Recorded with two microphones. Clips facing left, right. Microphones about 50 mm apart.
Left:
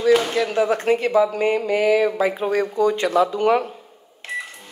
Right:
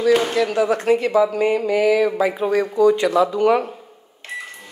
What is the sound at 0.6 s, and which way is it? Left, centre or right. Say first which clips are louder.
Speech: even; left.